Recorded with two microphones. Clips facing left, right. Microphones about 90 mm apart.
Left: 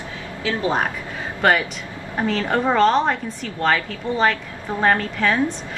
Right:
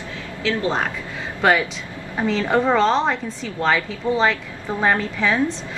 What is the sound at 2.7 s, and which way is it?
Speech, 5° left (ahead or behind).